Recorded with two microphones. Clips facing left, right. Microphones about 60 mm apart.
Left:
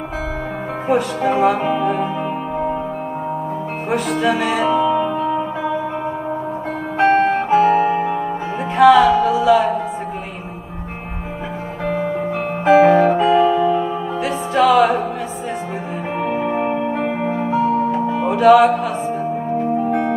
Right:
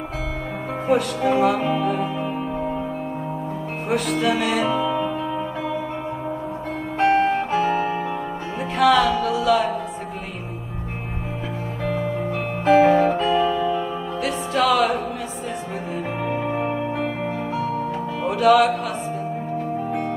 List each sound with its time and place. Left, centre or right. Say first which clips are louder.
0.8 s speech: left 2 dB; centre
2.5 s music: left 5 dB; centre
3.9 s music: left 3 dB; centre
7.0 s music: left 4 dB; centre
11.8 s music: left 4 dB; centre
16.2 s music: left 6 dB; centre
17.6 s music: left 8 dB; left
17.9 s music: left 6 dB; centre